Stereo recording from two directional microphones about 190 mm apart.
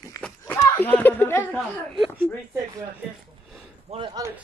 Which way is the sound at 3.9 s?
25° right (ahead or behind).